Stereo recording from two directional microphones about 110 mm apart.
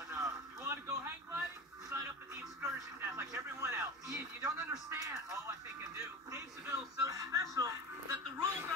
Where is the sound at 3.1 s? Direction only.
25° right (ahead or behind).